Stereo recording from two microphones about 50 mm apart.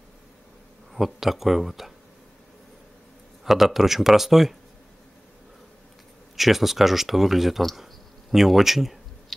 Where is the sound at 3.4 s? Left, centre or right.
Centre.